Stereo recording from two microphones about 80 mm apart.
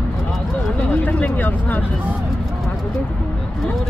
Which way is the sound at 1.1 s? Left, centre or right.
Centre.